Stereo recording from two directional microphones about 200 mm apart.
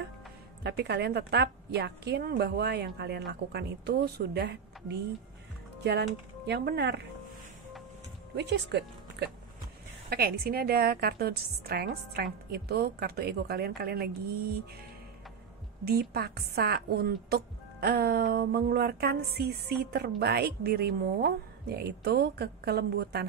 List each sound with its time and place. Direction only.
0.7 s a woman's voice: 55° right (ahead or behind)
8.4 s a woman's voice: 60° right (ahead or behind)
15.8 s a woman's voice: 50° right (ahead or behind)